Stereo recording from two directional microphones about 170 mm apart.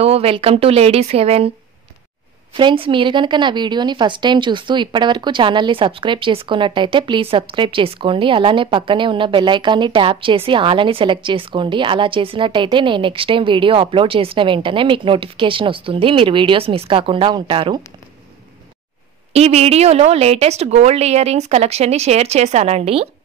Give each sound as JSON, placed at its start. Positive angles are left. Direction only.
{"t": 0.0, "sound": "a woman's voice", "side_deg": -35}
{"t": 2.5, "sound": "a woman's voice", "side_deg": -30}
{"t": 19.3, "sound": "a woman's voice", "side_deg": -40}